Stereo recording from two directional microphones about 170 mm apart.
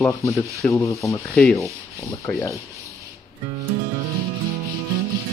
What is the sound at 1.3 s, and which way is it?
Sanding, 5° left (ahead or behind).